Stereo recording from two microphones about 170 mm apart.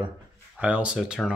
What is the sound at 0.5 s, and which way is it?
Speech, 10° right (ahead or behind).